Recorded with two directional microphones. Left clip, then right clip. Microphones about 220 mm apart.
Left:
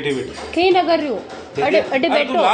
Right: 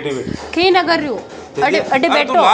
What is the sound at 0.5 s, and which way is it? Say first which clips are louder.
A woman's voice: right 2 dB; 5° right (ahead or behind).